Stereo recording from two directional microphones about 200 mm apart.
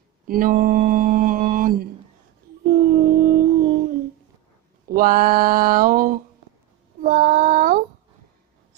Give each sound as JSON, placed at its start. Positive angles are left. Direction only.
{"t": 0.3, "sound": "mantra", "side_deg": -45}
{"t": 2.6, "sound": "a sound", "side_deg": -45}
{"t": 7.0, "sound": "child singing", "side_deg": -45}